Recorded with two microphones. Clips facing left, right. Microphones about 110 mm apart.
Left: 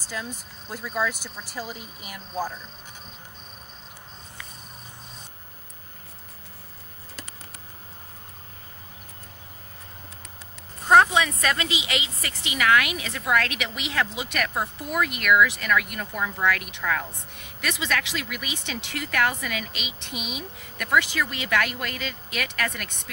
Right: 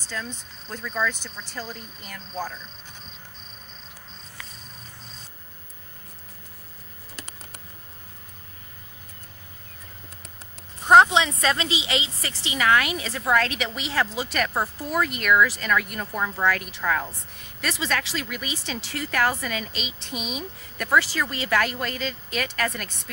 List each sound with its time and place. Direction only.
0.1 s speech: 10° left (ahead or behind)
10.9 s a woman's voice: 20° right (ahead or behind)